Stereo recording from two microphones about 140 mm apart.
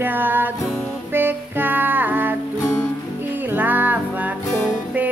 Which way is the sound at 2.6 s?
25° left (ahead or behind).